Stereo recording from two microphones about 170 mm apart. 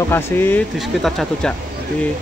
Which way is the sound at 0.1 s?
10° left (ahead or behind).